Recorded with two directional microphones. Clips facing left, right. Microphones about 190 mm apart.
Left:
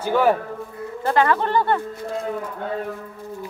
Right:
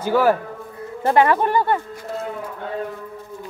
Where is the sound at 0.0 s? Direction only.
5° right (ahead or behind).